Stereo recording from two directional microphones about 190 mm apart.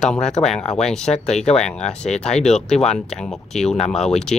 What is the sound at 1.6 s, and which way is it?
Speech, 5° left (ahead or behind).